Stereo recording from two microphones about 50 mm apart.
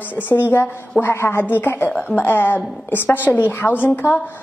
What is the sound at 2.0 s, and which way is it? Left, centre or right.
Speech, left.